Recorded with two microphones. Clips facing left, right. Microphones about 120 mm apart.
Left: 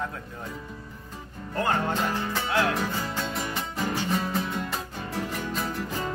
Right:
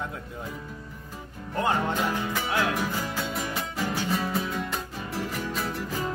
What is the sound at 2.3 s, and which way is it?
Music, 10° right (ahead or behind).